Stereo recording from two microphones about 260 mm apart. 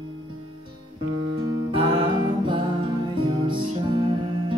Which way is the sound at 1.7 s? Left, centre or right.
Centre.